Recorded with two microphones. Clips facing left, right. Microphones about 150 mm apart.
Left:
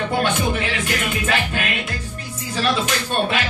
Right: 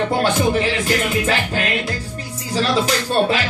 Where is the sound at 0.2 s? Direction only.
35° right (ahead or behind).